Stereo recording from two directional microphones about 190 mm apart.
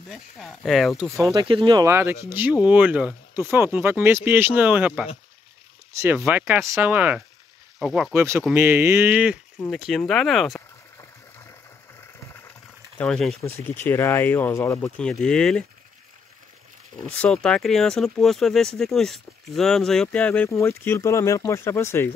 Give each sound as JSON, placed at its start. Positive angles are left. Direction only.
{"t": 0.1, "sound": "speech", "side_deg": 0}
{"t": 1.2, "sound": "speech", "side_deg": -25}
{"t": 12.9, "sound": "speech", "side_deg": 5}
{"t": 17.2, "sound": "speech", "side_deg": 5}